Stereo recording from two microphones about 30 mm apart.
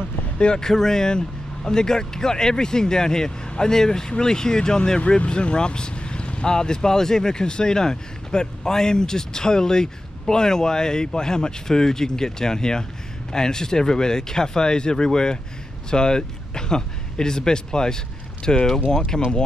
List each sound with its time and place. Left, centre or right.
0.6 s speech: centre